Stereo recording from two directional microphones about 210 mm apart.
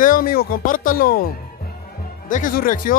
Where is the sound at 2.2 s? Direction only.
40° left (ahead or behind).